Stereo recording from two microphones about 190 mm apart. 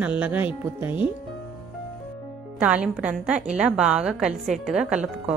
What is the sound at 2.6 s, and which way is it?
A woman's voice, 5° right (ahead or behind).